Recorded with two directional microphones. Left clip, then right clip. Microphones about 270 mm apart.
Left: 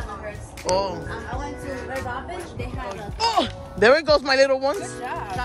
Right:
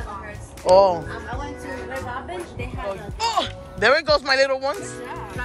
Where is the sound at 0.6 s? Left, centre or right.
Centre.